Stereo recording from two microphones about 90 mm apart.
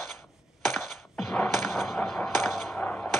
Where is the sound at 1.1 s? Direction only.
5° left (ahead or behind).